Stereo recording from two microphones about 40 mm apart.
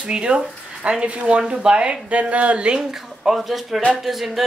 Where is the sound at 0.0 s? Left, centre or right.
Right.